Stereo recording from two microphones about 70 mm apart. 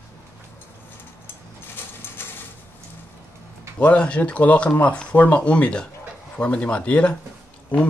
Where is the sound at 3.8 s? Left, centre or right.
Centre.